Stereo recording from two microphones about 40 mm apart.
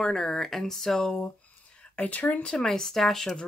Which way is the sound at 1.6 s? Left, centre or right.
Left.